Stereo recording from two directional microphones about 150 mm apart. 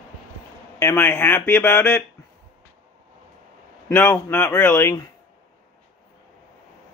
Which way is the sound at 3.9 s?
15° left (ahead or behind).